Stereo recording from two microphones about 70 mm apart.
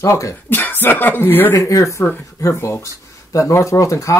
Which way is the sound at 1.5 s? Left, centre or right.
Left.